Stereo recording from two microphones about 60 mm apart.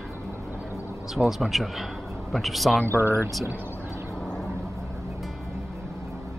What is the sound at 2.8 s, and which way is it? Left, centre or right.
Speech, right.